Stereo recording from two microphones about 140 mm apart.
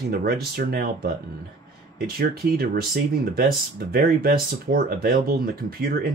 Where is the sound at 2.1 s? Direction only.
90° right.